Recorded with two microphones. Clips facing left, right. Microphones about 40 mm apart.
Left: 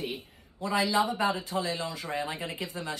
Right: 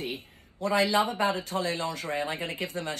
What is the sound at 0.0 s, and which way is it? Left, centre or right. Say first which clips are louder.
Speech: even; right.